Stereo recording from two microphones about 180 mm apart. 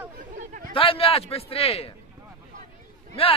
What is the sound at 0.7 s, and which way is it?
Speech, 30° left (ahead or behind).